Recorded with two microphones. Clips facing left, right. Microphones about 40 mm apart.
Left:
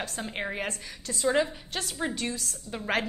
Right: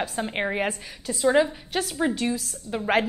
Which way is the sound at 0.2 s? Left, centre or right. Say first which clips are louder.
Right 6 dB; right.